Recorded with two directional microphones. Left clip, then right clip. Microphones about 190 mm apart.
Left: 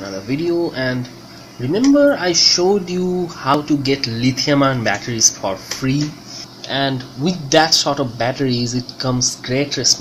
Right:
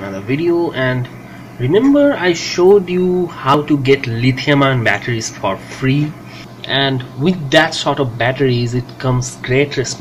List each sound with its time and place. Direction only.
0.3 s speech: 15° left (ahead or behind)